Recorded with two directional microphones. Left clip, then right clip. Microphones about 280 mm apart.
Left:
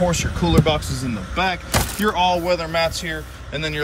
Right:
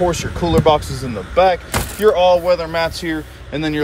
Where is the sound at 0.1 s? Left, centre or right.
Centre.